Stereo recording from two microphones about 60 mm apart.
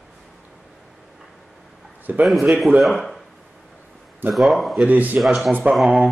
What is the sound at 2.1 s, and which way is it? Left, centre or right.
Speech, right.